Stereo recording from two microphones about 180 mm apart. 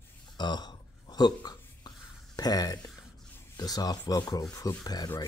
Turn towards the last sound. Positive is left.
turn(degrees=20)  # may be behind; listen again after turning